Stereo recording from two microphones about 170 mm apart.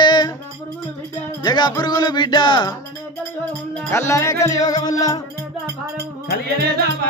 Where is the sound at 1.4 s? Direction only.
25° left (ahead or behind).